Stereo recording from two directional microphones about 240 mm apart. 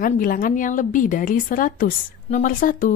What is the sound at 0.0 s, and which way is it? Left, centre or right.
A woman's voice, left.